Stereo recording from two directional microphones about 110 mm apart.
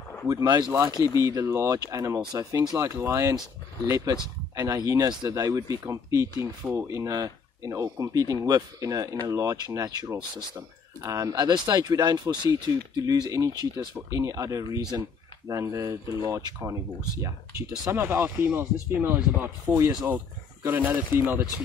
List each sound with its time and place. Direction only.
0.3 s speech: 35° right (ahead or behind)
6.4 s speech: 15° right (ahead or behind)
6.9 s speech: 30° right (ahead or behind)